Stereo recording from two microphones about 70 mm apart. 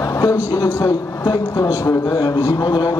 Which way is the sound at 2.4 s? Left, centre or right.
Left.